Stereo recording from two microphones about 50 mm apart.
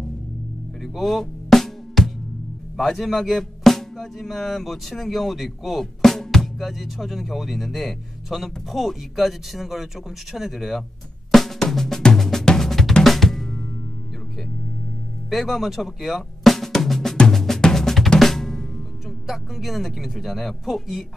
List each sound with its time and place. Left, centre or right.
0.8 s music: centre
2.8 s speech: centre
11.3 s drum: centre
15.2 s speech: centre
17.2 s drum: centre
18.2 s speech: centre